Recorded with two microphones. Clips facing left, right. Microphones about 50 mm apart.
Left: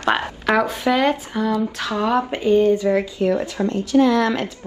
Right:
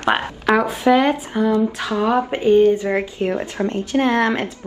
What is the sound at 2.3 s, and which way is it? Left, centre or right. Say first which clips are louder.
A woman's voice: right 3 dB; right.